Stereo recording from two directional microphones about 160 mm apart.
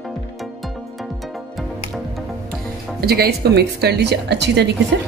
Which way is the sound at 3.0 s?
75° right (ahead or behind).